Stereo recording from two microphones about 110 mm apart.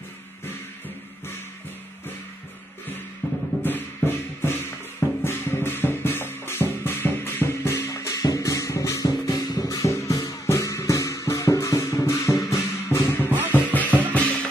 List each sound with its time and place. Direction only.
3.2 s music: 15° left (ahead or behind)